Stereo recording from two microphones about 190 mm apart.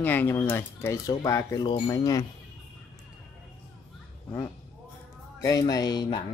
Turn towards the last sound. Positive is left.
turn(degrees=20)  # may be behind; listen again after turning